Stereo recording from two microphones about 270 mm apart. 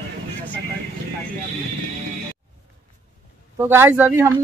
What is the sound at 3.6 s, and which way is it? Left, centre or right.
Speech, centre.